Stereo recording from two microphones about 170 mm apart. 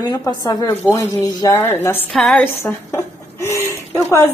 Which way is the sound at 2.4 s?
15° left (ahead or behind).